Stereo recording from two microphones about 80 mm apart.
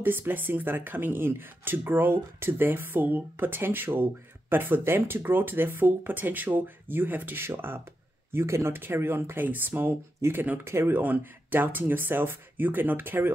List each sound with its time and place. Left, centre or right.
0.0 s speech: right